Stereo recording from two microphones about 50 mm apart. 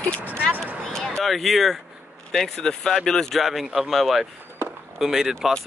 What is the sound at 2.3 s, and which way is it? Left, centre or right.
Speech, centre.